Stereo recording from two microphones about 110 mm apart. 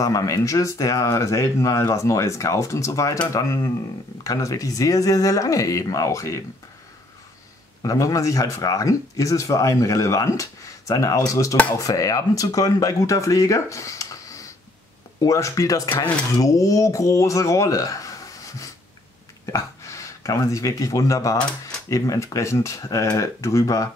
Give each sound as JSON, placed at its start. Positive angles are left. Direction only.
{"t": 0.0, "sound": "speech", "side_deg": 30}
{"t": 7.8, "sound": "speech", "side_deg": 30}